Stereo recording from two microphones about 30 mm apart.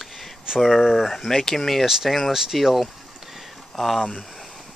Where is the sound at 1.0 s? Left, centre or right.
Centre.